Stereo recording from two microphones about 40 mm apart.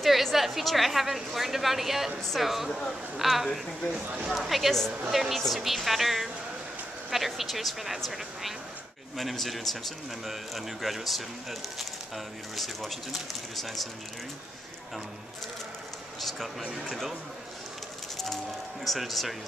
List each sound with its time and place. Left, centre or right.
0.0 s a woman's voice: centre
3.9 s speech: right
4.3 s a woman's voice: centre
12.5 s a woman's voice: centre
16.2 s a woman's voice: centre
18.1 s music: centre
18.9 s a woman's voice: centre